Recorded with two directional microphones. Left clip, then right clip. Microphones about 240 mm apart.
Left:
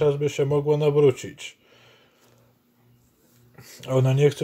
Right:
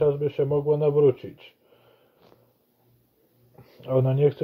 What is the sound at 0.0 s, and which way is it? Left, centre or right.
Speech, centre.